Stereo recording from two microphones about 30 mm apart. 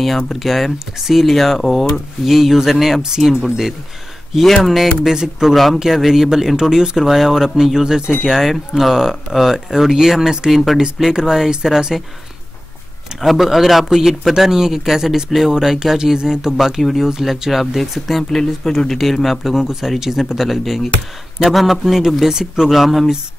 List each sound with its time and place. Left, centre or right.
0.3 s speech: centre
2.2 s speech: centre
4.4 s speech: centre
5.1 s speech: centre
5.5 s speech: centre
13.2 s speech: centre; by 16.5 s right
16.5 s speech: centre
18.3 s speech: centre
19.2 s speech: centre
22.3 s speech: centre
22.7 s speech: centre